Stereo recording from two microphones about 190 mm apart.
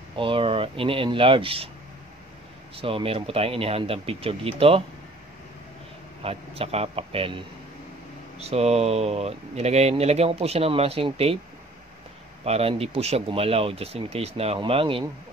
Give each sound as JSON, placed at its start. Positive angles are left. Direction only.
{"t": 0.1, "sound": "speech", "side_deg": -25}
{"t": 2.8, "sound": "speech", "side_deg": -30}
{"t": 6.2, "sound": "speech", "side_deg": -30}
{"t": 12.4, "sound": "speech", "side_deg": -30}